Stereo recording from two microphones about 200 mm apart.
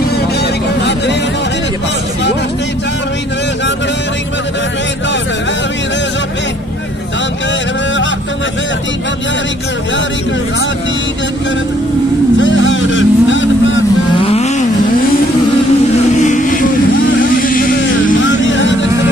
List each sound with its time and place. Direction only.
12.4 s vehicle: 70° left (ahead or behind)
14.1 s vehicle: 30° left (ahead or behind)
16.2 s music: 40° left (ahead or behind)
17.2 s vehicle: 45° left (ahead or behind)
18.2 s a sound: 70° left (ahead or behind)